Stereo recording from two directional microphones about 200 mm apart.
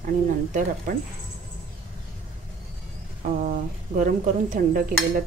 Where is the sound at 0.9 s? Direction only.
40° right (ahead or behind).